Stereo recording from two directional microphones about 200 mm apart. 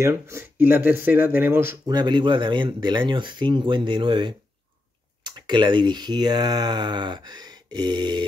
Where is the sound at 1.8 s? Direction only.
20° right (ahead or behind).